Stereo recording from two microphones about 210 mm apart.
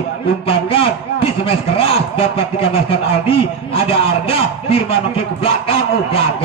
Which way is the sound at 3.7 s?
25° left (ahead or behind).